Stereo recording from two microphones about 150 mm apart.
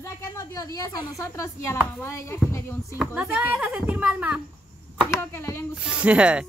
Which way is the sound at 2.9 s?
5° right (ahead or behind).